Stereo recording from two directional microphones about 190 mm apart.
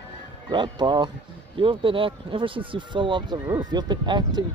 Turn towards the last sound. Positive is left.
turn(degrees=-25)  # may be behind; listen again after turning